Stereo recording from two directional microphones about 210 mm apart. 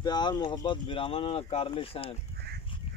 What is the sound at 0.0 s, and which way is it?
Speech, 20° left (ahead or behind).